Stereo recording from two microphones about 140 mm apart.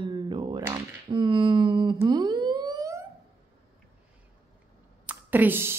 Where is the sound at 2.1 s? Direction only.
30° right (ahead or behind).